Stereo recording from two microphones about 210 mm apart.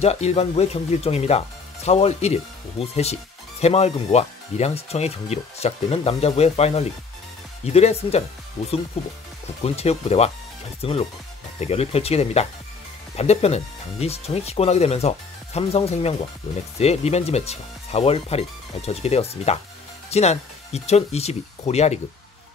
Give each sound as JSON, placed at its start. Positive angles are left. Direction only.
{"t": 0.0, "sound": "speech", "side_deg": 30}